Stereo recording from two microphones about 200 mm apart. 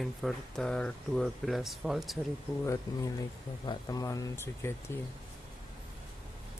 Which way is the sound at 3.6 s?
20° left (ahead or behind).